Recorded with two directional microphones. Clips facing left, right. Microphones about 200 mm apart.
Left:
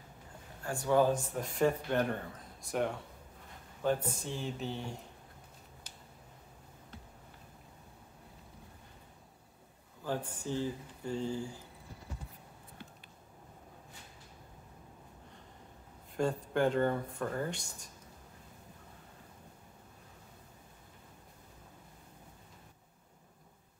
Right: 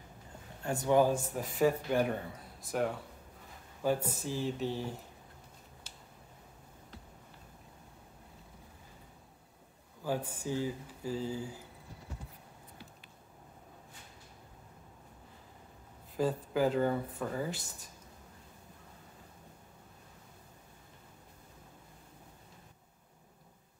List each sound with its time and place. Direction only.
0.7 s speech: 20° right (ahead or behind)
1.1 s speech: 5° right (ahead or behind)
10.0 s speech: 10° right (ahead or behind)
16.2 s speech: 5° right (ahead or behind)